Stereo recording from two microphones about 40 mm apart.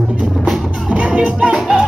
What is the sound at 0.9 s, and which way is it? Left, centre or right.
Music, right.